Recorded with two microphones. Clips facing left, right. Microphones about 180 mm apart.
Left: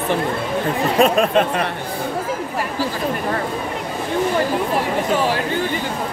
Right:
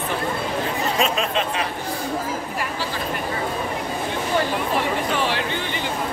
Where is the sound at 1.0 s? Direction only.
55° left (ahead or behind).